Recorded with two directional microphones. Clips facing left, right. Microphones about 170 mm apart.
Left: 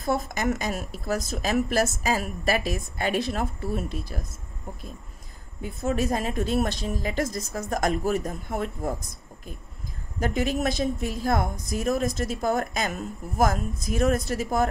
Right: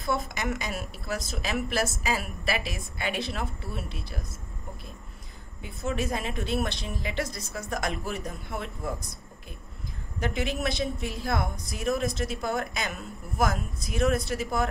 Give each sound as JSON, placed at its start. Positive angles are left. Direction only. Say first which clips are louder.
{"t": 0.0, "sound": "a woman's voice", "louder": "left 4 dB", "side_deg": 45}
{"t": 5.6, "sound": "a woman's voice", "louder": "left 5 dB", "side_deg": 40}
{"t": 10.2, "sound": "a woman's voice", "louder": "left 4 dB", "side_deg": 45}